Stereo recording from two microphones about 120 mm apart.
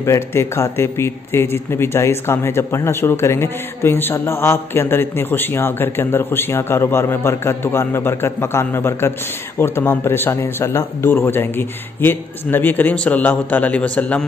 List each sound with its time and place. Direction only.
0.0 s speech: 20° left (ahead or behind)